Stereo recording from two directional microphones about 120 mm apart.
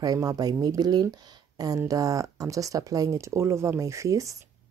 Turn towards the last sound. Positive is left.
turn(degrees=-25)  # may be behind; listen again after turning